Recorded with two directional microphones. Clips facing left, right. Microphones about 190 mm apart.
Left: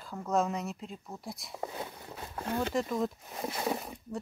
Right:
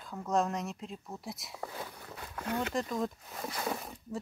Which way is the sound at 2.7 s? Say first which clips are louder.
Left 2 dB; centre (ahead or behind).